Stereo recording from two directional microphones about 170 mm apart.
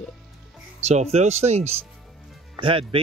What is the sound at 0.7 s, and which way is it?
Speech, 40° right (ahead or behind).